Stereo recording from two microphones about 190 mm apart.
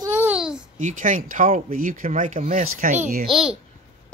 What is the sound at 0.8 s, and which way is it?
Speech, 40° right (ahead or behind).